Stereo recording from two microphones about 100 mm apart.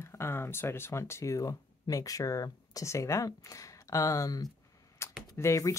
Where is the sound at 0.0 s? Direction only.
25° left (ahead or behind).